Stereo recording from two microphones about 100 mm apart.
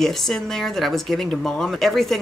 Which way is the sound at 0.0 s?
5° left (ahead or behind).